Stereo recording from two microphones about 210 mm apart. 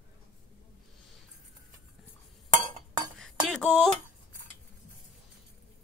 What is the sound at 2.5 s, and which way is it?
Chink, 35° right (ahead or behind).